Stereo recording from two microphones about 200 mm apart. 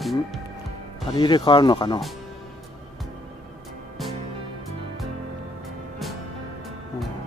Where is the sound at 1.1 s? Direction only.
20° left (ahead or behind).